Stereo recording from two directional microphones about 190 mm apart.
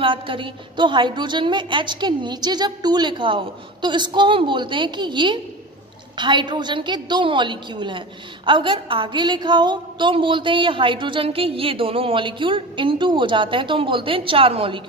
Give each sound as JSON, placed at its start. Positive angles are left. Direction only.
{"t": 0.0, "sound": "a woman's voice", "side_deg": -25}